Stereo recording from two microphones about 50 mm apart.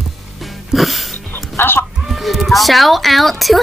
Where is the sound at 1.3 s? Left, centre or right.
Left.